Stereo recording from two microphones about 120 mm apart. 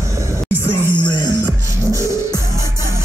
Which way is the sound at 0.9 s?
40° left (ahead or behind).